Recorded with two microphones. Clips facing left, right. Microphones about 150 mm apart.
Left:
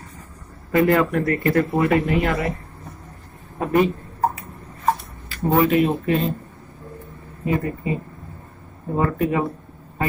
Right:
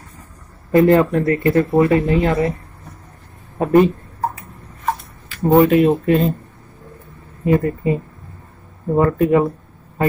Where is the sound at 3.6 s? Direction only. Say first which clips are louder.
Right 6 dB; 40° right (ahead or behind).